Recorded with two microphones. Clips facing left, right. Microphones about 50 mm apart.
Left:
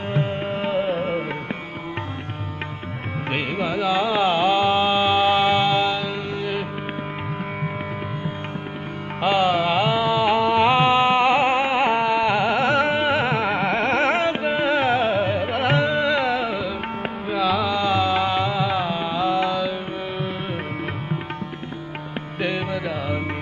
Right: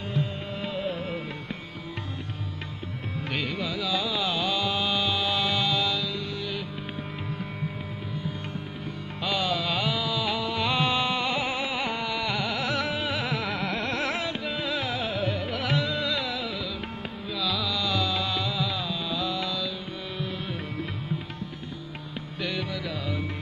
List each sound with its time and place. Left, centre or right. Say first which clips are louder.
0.1 s music: left 7 dB; left
3.3 s carnatic music: left 6 dB; left
9.2 s music: left 9 dB; left
22.4 s music: left 7 dB; left